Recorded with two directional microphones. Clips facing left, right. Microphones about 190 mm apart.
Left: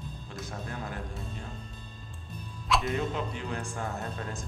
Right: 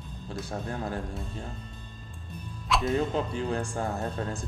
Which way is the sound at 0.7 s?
35° right (ahead or behind).